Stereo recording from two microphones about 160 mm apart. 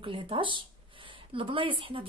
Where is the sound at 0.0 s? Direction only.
30° right (ahead or behind).